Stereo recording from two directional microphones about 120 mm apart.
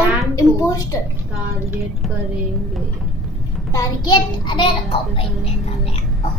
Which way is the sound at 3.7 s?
35° left (ahead or behind).